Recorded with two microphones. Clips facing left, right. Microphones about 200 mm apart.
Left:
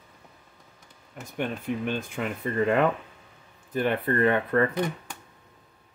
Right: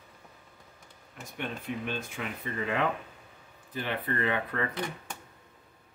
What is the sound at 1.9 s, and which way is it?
Speech, 50° left (ahead or behind).